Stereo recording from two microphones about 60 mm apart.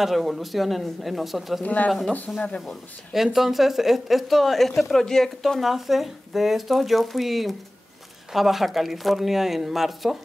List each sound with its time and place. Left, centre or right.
0.0 s speech: centre
1.6 s speech: left
2.3 s speech: centre